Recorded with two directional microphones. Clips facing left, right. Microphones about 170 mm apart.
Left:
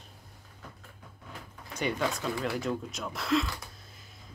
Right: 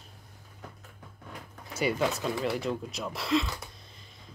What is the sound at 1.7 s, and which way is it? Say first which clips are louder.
Speech: right 3 dB; 5° right (ahead or behind).